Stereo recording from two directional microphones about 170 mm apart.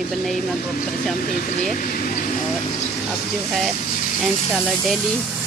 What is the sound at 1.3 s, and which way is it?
Speech, 55° left (ahead or behind).